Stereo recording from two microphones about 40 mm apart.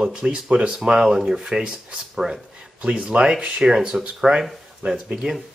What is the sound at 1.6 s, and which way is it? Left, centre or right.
Speech, right.